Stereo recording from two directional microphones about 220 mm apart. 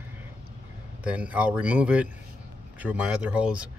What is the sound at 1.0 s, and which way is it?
Speech, 5° right (ahead or behind).